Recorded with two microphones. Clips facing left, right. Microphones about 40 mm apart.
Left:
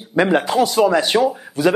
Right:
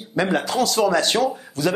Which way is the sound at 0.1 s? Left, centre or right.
Left.